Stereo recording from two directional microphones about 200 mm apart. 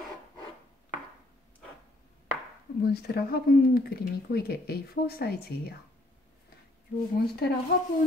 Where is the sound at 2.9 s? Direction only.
50° left (ahead or behind).